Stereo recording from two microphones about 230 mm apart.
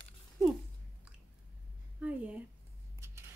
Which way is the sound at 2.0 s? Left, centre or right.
Centre.